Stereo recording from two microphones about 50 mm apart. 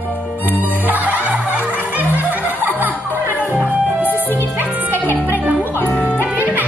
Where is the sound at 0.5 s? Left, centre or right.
Right.